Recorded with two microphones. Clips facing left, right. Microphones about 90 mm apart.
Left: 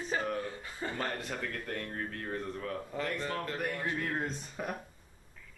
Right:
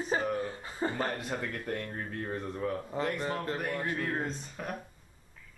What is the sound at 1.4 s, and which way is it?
Speech, 15° right (ahead or behind).